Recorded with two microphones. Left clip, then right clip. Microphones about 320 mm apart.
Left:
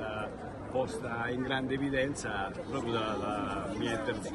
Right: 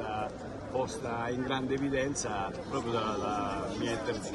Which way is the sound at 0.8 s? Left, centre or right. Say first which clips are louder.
Even; centre.